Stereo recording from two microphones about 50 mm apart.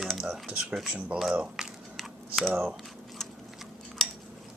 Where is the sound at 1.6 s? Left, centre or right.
Centre.